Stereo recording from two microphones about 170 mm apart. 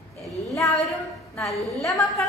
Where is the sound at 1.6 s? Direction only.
20° left (ahead or behind).